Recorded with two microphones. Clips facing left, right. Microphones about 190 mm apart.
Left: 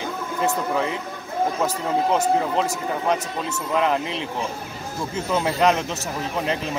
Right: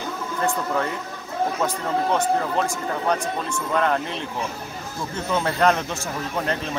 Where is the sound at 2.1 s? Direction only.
5° left (ahead or behind).